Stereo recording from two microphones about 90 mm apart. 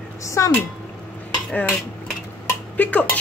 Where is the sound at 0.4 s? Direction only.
35° left (ahead or behind).